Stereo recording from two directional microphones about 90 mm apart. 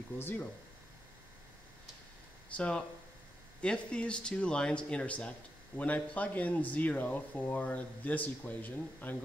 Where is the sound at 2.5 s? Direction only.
15° left (ahead or behind).